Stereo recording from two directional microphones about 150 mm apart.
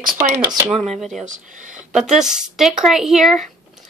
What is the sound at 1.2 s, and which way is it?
Speech, 55° right (ahead or behind).